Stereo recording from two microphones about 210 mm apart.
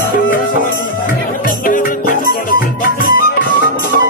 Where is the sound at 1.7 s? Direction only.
40° left (ahead or behind).